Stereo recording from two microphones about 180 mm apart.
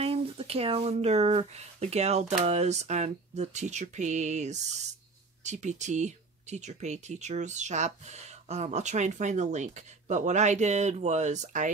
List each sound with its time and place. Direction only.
0.0 s speech: 35° right (ahead or behind)